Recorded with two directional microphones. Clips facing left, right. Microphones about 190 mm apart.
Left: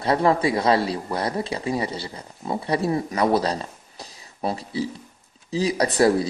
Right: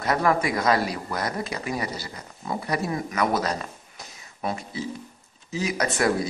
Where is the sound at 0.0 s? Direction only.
30° left (ahead or behind).